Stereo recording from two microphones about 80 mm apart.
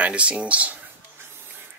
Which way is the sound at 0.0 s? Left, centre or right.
Centre.